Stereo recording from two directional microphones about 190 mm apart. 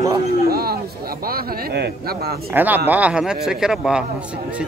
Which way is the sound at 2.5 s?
10° right (ahead or behind).